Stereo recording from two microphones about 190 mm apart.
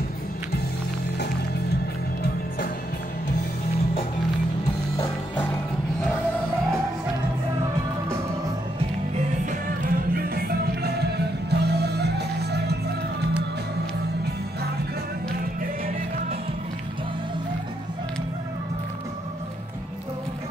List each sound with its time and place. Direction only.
4.9 s music: 15° left (ahead or behind)
9.5 s music: 50° right (ahead or behind)